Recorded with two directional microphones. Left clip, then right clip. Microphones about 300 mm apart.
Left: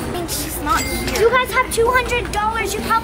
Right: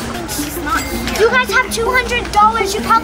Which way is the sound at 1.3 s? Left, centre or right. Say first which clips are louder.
Right 2 dB; right.